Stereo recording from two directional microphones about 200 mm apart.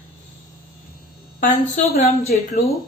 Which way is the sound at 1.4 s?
30° left (ahead or behind).